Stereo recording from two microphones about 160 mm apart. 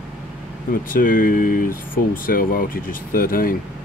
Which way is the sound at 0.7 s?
60° left (ahead or behind).